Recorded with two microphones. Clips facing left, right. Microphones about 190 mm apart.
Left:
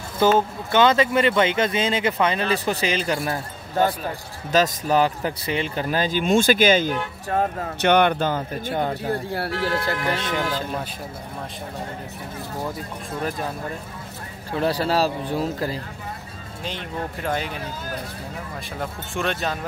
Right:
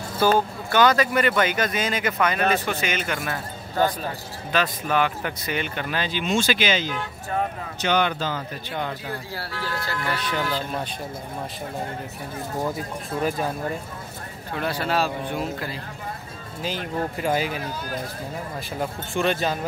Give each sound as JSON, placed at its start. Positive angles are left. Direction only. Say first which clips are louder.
{"t": 0.2, "sound": "speech", "louder": "left 2 dB", "side_deg": 20}
{"t": 10.0, "sound": "speech", "louder": "left 3 dB", "side_deg": 20}
{"t": 14.6, "sound": "speech", "louder": "left 4 dB", "side_deg": 35}
{"t": 17.2, "sound": "speech", "louder": "right 3 dB", "side_deg": -5}
{"t": 18.8, "sound": "speech", "louder": "right 3 dB", "side_deg": 0}